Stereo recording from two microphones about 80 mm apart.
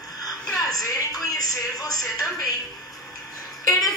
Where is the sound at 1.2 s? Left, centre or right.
Left.